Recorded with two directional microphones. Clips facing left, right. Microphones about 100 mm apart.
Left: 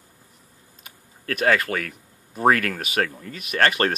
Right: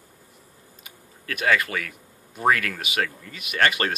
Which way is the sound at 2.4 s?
40° left (ahead or behind).